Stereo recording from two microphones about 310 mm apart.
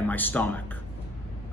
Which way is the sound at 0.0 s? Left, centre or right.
Centre.